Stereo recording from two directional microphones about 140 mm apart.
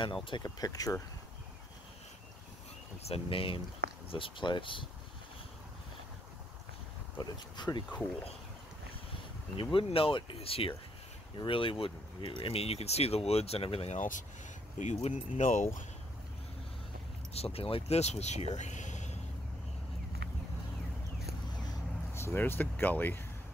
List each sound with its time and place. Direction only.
0.0 s speech: 35° left (ahead or behind)
3.0 s speech: 45° left (ahead or behind)
7.2 s speech: 30° left (ahead or behind)
9.6 s speech: 40° left (ahead or behind)
13.9 s speech: 65° left (ahead or behind)
14.8 s speech: 55° left (ahead or behind)
17.3 s speech: 45° left (ahead or behind)
18.6 s a sound: 60° left (ahead or behind)
22.1 s speech: 15° left (ahead or behind)